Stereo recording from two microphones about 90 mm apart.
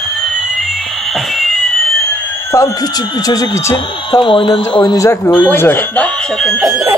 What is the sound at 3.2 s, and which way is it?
Speech, 45° left (ahead or behind).